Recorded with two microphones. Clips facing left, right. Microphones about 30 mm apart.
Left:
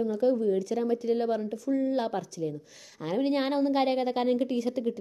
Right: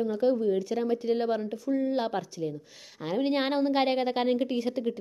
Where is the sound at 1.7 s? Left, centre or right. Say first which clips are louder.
Even; centre.